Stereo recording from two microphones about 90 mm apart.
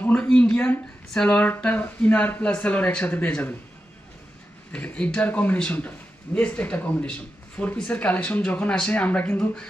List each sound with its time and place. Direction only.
0.0 s a man's voice: 15° left (ahead or behind)
4.7 s a man's voice: 15° left (ahead or behind)